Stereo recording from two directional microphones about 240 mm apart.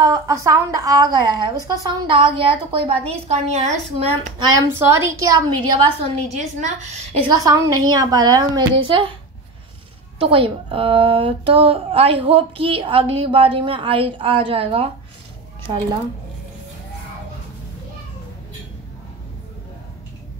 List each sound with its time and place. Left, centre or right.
0.0 s a woman's voice: centre
4.6 s a woman's voice: centre
6.2 s speech: right
7.3 s a woman's voice: centre
10.1 s speech: right